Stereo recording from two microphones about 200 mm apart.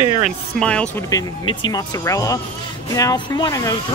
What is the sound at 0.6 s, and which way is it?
Speech, 5° left (ahead or behind).